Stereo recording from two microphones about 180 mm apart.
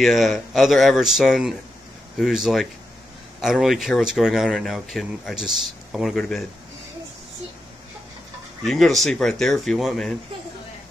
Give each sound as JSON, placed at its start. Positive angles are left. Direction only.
{"t": 0.0, "sound": "speech", "side_deg": 0}
{"t": 8.6, "sound": "speech", "side_deg": 0}